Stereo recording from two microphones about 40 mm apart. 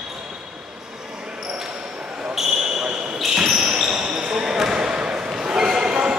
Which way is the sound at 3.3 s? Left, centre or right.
Centre.